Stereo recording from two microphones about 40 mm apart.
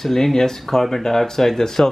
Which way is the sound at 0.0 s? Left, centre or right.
Centre.